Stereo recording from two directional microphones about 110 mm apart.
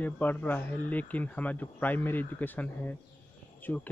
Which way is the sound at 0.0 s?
15° left (ahead or behind).